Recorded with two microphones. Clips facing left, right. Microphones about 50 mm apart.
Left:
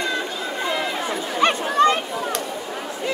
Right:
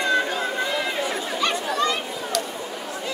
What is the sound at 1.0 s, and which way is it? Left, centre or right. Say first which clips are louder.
Chatter: left 4 dB; left.